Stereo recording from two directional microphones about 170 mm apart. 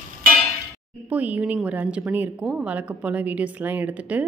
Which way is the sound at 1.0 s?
10° right (ahead or behind).